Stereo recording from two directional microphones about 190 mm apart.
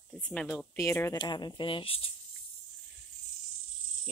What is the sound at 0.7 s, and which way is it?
Speech, 15° left (ahead or behind).